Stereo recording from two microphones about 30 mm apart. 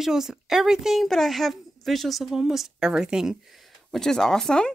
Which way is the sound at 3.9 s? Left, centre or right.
Centre.